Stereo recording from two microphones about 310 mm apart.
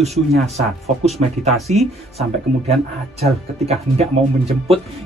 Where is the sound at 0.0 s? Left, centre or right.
Right.